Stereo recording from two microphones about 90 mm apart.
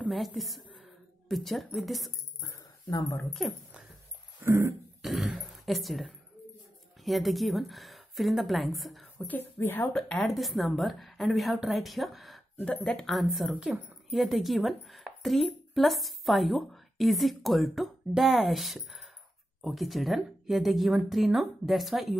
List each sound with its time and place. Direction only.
0.1 s a woman's voice: centre (ahead or behind)
2.9 s speech: 40° left (ahead or behind)
4.4 s dog: 25° right (ahead or behind)
5.0 s a sound: centre (ahead or behind)
7.1 s a woman's voice: centre (ahead or behind)
9.2 s speech: 20° left (ahead or behind)
9.9 s a woman's voice: 5° left (ahead or behind)
12.5 s a woman's voice: 15° left (ahead or behind)
13.0 s a woman's voice: centre (ahead or behind)